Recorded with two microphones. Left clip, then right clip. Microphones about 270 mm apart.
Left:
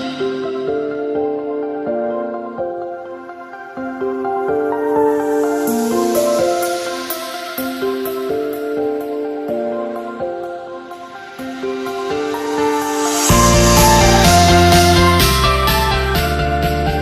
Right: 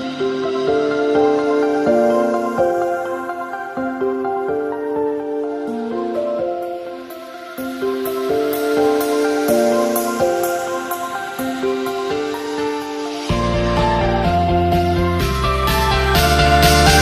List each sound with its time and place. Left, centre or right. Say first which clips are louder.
0.2 s music: right 2 dB; centre; by 2.7 s right
4.5 s music: left 4 dB; centre; by 6.7 s left
8.3 s music: right 5 dB; centre; by 10.5 s right
12.5 s music: left 5 dB; left; by 17.0 s right